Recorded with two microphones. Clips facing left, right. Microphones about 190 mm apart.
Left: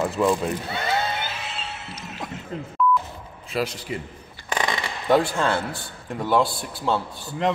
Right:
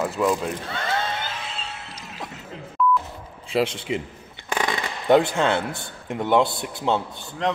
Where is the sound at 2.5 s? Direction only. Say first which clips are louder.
Left 6 dB; 45° left (ahead or behind).